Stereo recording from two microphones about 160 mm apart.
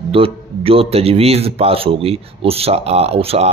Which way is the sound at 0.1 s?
35° right (ahead or behind).